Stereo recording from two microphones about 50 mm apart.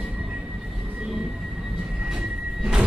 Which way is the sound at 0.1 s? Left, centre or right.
Right.